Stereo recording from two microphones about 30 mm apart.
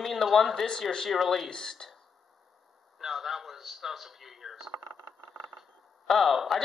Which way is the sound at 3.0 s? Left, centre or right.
Centre.